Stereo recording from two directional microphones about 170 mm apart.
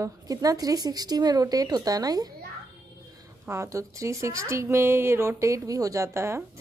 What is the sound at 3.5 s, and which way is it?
A woman's voice, 15° right (ahead or behind).